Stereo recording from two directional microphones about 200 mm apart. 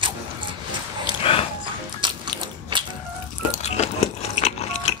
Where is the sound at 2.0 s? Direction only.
25° right (ahead or behind).